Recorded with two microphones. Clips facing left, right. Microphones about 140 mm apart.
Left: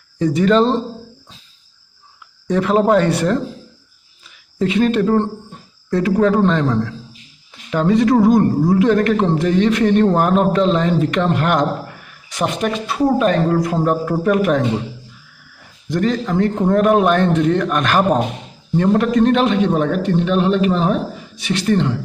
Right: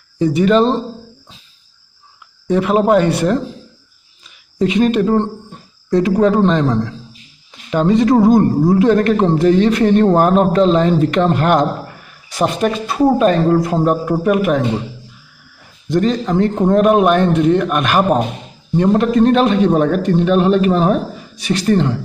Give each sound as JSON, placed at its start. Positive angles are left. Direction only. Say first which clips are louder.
{"t": 0.2, "sound": "a man's voice", "louder": "right 2 dB", "side_deg": -10}
{"t": 2.4, "sound": "a man's voice", "louder": "right 1 dB", "side_deg": -10}
{"t": 15.9, "sound": "a man's voice", "louder": "right 3 dB", "side_deg": -25}
{"t": 19.1, "sound": "a man's voice", "louder": "right 2 dB", "side_deg": -35}